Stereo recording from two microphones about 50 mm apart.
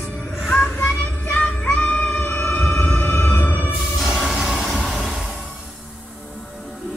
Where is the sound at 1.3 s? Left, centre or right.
Left.